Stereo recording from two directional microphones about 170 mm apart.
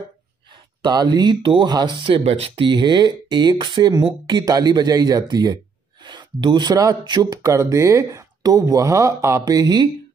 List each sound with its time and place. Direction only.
0.8 s speech: 25° right (ahead or behind)